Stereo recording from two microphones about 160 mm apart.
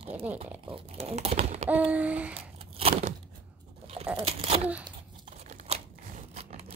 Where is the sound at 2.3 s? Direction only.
40° right (ahead or behind).